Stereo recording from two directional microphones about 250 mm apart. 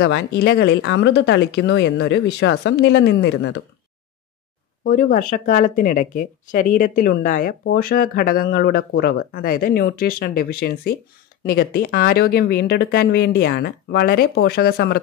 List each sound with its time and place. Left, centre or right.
0.0 s speech: left
4.8 s speech: left